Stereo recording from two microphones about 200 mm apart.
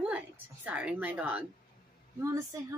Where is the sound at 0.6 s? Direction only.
5° right (ahead or behind).